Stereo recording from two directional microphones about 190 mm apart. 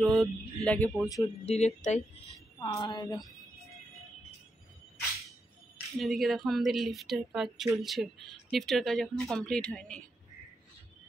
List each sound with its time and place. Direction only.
0.0 s speech: centre (ahead or behind)
1.0 s speech: 20° left (ahead or behind)
1.4 s speech: 35° left (ahead or behind)
2.6 s a woman's voice: 20° left (ahead or behind)
5.9 s speech: centre (ahead or behind)